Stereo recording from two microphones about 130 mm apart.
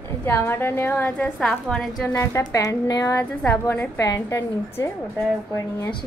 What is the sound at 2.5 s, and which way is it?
A woman's voice, 30° left (ahead or behind).